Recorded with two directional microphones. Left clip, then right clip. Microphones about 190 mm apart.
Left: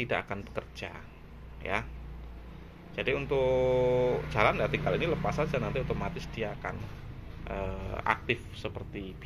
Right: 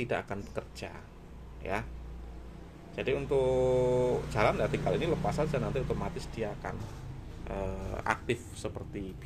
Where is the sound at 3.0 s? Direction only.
15° right (ahead or behind).